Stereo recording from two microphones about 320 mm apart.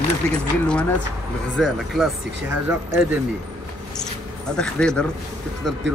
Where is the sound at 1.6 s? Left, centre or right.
Centre.